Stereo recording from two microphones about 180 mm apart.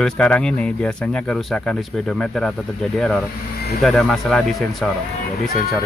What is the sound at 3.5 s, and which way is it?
Vehicle, 60° left (ahead or behind).